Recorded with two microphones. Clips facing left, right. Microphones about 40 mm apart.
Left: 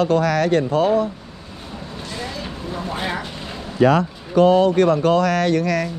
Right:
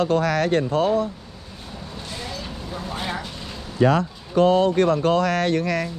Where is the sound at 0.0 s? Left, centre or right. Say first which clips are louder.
Left 3 dB; left.